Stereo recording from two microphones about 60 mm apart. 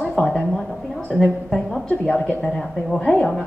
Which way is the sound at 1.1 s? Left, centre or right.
Centre.